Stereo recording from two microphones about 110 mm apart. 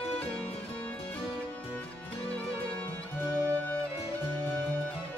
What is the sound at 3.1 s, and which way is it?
Music, 15° left (ahead or behind).